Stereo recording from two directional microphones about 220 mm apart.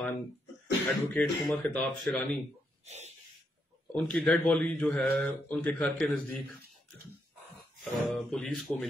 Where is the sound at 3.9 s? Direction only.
5° left (ahead or behind).